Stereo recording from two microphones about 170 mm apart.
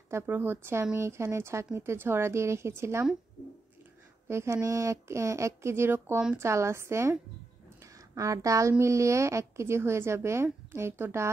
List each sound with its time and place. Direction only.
0.1 s speech: 10° right (ahead or behind)
4.3 s speech: 15° right (ahead or behind)